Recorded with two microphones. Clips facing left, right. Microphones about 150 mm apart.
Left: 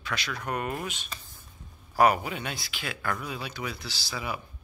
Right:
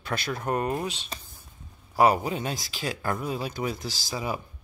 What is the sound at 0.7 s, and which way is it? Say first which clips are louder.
Speech: right 4 dB; 30° right (ahead or behind).